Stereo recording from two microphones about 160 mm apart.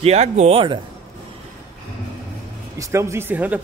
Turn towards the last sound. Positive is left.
turn(degrees=-10)  # may be behind; listen again after turning